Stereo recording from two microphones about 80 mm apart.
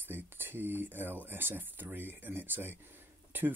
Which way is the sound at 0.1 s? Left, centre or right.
Right.